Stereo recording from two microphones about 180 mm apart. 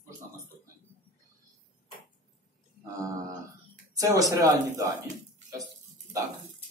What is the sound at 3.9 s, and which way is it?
Speech, 20° right (ahead or behind).